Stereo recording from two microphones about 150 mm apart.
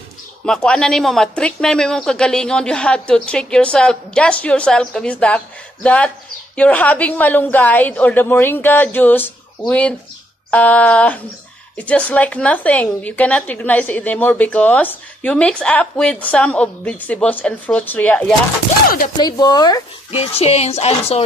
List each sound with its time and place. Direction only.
0.5 s speech: 5° left (ahead or behind)
19.1 s speech: 25° left (ahead or behind)
20.1 s speech: 40° left (ahead or behind)